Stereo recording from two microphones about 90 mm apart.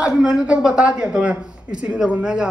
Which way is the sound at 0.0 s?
10° right (ahead or behind).